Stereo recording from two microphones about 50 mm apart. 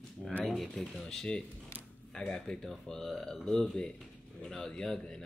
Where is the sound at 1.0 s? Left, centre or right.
Centre.